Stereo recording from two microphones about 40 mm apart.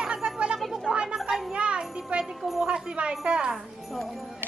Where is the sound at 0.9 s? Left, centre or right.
Right.